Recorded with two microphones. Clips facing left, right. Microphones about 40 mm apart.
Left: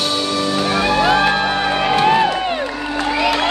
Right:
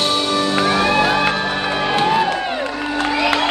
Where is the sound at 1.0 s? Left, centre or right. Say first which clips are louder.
Left 2 dB; left.